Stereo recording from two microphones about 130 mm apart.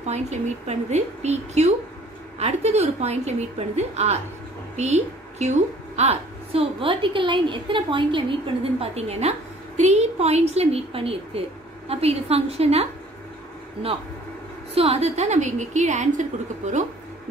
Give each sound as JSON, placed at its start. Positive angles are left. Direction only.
{"t": 0.0, "sound": "a woman's voice", "side_deg": -60}
{"t": 14.7, "sound": "a woman's voice", "side_deg": -50}